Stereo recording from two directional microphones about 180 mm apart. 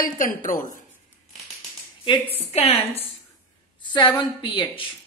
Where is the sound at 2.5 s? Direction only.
35° left (ahead or behind).